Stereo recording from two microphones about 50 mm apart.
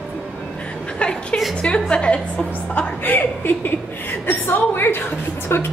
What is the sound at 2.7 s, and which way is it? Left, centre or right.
A woman's voice, left.